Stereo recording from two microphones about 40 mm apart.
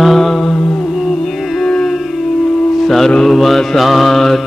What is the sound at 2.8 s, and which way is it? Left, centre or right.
Mantra, centre.